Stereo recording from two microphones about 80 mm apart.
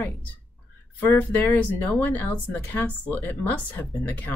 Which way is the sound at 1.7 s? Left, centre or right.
Left.